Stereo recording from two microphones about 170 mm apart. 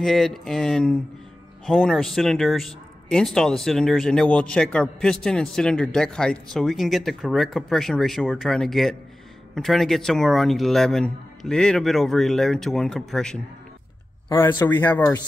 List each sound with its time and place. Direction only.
0.0 s speech: centre (ahead or behind)
14.5 s speech: 25° left (ahead or behind)
14.8 s speech: 10° left (ahead or behind)